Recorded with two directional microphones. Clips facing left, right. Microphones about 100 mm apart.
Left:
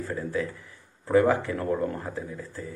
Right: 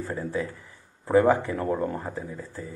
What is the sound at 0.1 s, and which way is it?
A man's voice, 15° right (ahead or behind).